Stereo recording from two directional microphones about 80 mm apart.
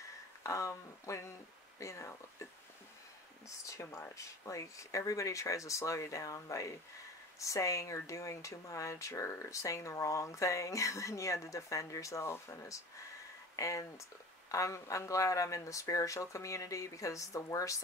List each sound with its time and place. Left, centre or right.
0.4 s speech: left
3.4 s speech: left